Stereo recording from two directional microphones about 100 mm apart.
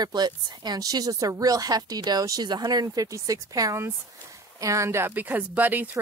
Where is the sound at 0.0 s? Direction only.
45° right (ahead or behind).